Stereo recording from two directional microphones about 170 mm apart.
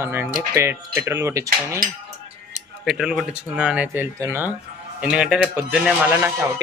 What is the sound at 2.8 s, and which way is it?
Speech, centre (ahead or behind).